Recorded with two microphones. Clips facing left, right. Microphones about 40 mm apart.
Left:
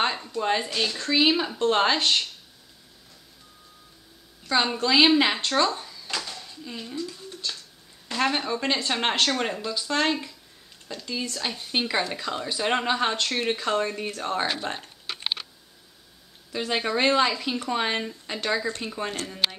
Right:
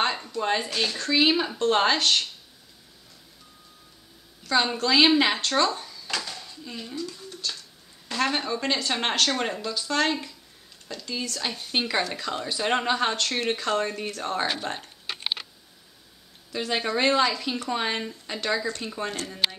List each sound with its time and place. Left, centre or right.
0.4 s speech: centre
2.0 s speech: centre
4.5 s a woman's voice: centre
5.5 s a sound: centre
6.5 s speech: centre
8.2 s speech: centre
11.3 s speech: centre
16.5 s speech: centre